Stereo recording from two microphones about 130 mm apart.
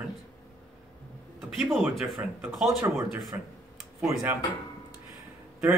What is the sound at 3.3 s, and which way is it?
Speech, 20° right (ahead or behind).